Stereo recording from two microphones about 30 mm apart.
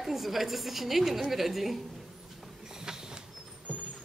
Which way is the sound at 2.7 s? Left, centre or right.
Right.